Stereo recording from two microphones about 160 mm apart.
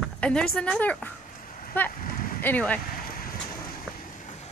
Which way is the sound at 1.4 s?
55° left (ahead or behind).